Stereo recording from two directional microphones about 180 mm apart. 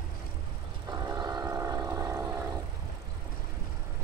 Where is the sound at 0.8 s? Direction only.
20° right (ahead or behind).